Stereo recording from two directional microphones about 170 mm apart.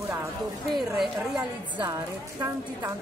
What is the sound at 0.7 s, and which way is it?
Speech, centre (ahead or behind).